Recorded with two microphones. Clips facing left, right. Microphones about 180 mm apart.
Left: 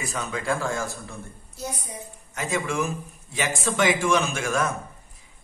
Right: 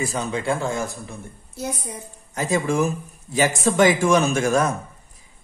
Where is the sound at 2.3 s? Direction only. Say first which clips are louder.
Right 5 dB; 35° right (ahead or behind).